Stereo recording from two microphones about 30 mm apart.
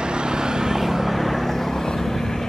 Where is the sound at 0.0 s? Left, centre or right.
Right; by 1.1 s centre.